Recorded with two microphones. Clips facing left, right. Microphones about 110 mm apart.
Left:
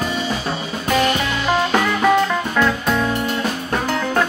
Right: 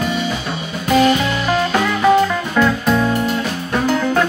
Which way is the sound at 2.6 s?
10° right (ahead or behind).